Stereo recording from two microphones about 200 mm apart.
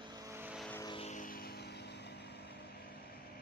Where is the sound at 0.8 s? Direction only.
20° left (ahead or behind).